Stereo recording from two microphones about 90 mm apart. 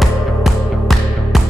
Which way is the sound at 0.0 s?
Centre (ahead or behind).